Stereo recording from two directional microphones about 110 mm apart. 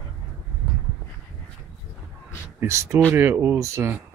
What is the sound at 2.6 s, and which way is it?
Speech, 25° right (ahead or behind).